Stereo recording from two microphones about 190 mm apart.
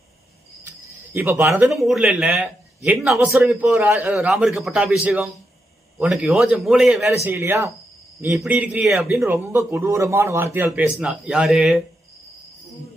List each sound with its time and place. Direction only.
1.1 s a man's voice: 10° right (ahead or behind)
1.7 s a man's voice: centre (ahead or behind)